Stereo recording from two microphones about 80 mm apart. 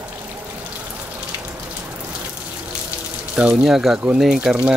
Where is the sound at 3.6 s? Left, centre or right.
Centre.